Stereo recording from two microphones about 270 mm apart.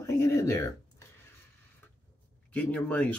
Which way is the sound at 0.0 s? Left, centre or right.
Centre.